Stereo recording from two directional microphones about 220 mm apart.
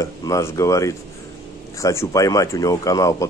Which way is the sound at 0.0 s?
15° left (ahead or behind).